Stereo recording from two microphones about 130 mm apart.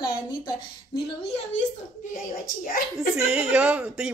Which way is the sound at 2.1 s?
90° left.